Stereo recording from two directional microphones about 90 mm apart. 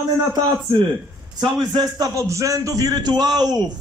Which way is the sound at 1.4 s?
50° right (ahead or behind).